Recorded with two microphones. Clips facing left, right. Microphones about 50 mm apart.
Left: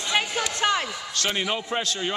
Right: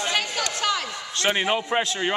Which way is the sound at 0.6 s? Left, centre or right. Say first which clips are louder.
Left 3 dB; left.